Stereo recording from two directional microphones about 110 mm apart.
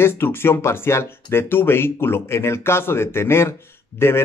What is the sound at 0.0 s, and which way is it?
Speech, 20° left (ahead or behind).